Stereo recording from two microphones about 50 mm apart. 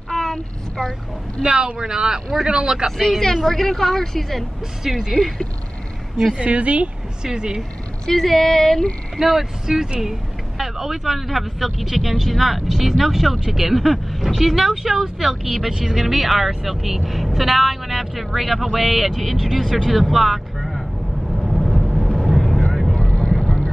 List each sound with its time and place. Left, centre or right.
0.1 s child singing: centre
1.4 s speech: centre
3.0 s speech: centre
4.8 s speech: centre
6.3 s speech: right
7.2 s speech: centre
8.1 s speech: centre
9.2 s speech: centre
21.4 s vehicle: centre
22.9 s vehicle: centre